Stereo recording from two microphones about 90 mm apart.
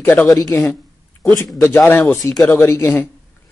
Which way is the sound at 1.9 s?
25° left (ahead or behind).